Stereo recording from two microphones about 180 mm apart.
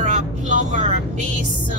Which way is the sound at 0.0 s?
45° right (ahead or behind).